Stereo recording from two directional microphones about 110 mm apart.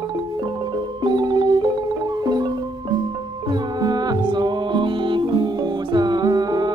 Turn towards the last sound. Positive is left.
turn(degrees=-40)  # may be behind; listen again after turning